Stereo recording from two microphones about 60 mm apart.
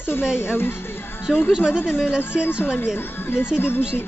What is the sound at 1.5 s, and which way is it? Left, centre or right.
Speech, centre.